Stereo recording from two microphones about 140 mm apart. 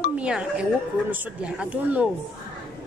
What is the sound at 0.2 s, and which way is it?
A woman's voice, 10° right (ahead or behind).